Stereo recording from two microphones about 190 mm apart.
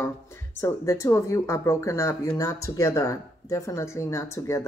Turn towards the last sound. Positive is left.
turn(degrees=15)  # may be behind; listen again after turning